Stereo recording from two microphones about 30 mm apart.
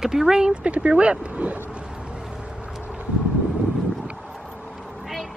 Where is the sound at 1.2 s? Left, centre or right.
Right.